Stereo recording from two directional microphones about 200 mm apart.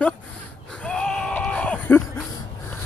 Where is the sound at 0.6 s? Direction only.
5° left (ahead or behind).